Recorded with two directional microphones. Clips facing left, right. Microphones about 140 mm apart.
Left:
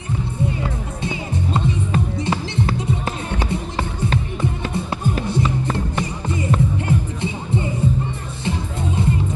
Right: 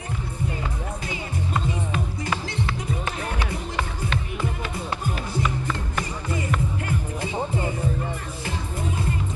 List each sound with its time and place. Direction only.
2.1 s music: 25° left (ahead or behind)
2.6 s music: 35° left (ahead or behind)
5.3 s music: 25° left (ahead or behind)